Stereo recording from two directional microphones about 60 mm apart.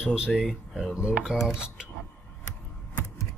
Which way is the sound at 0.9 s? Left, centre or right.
Centre.